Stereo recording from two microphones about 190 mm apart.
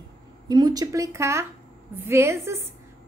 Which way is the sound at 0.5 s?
20° right (ahead or behind).